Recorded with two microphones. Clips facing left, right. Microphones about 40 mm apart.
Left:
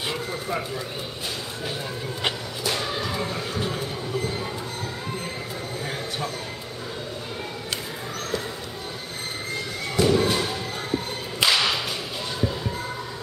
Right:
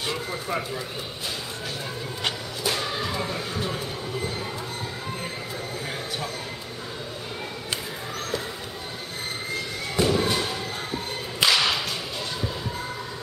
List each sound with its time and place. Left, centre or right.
0.3 s speech: centre
2.6 s music: centre
9.9 s whip: centre